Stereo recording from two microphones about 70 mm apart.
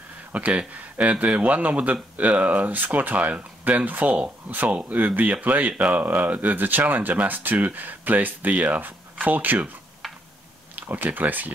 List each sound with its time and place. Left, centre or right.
0.3 s speech: right
10.8 s speech: right